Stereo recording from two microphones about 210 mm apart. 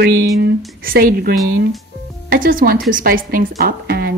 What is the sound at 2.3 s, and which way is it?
A woman's voice, 40° right (ahead or behind).